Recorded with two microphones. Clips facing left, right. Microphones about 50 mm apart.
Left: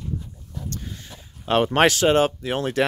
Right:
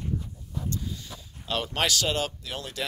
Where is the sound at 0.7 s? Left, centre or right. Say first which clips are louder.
Right 1 dB; left.